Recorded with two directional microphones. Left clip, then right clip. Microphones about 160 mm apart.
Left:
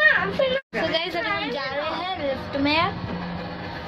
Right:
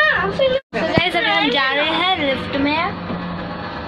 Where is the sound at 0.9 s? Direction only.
10° left (ahead or behind).